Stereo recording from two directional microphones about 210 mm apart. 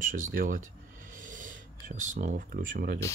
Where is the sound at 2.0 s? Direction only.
35° right (ahead or behind).